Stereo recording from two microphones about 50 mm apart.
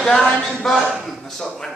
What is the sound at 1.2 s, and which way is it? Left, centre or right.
Speech, centre.